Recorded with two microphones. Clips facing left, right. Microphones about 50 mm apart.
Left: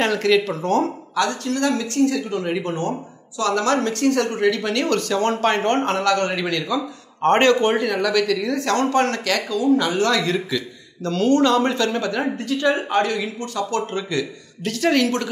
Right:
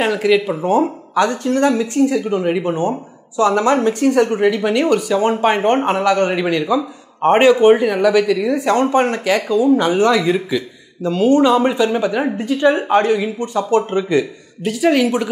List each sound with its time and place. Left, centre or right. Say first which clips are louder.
0.0 s speech: right 3 dB; centre
14.6 s speech: right 4 dB; centre